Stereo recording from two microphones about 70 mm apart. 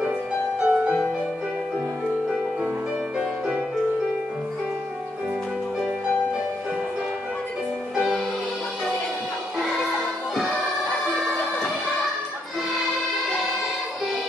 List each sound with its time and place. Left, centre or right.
0.6 s music: centre
7.9 s music: centre